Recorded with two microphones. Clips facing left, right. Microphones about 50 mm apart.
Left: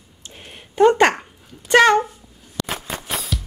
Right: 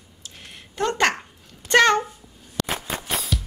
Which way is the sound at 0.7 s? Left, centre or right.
Centre.